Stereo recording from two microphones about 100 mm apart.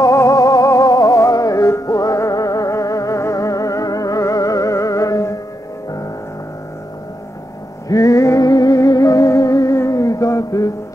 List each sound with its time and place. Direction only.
0.0 s music: 35° left (ahead or behind)
7.9 s music: 35° left (ahead or behind)